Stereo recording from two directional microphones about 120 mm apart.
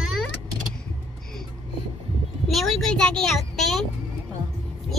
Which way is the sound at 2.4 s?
Centre (ahead or behind).